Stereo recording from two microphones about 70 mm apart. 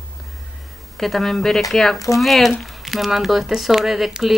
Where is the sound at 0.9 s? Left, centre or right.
Centre.